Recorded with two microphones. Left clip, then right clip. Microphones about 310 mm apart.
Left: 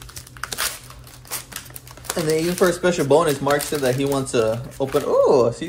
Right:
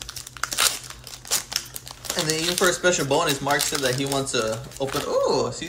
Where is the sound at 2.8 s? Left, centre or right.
Centre.